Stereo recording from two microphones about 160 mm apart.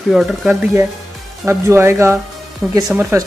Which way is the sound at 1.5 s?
15° right (ahead or behind).